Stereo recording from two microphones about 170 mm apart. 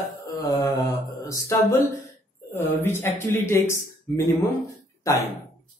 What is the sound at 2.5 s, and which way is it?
Speech, 15° left (ahead or behind).